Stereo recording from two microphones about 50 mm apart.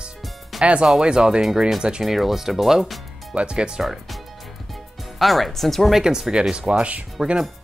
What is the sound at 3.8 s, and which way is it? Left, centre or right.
Music, centre.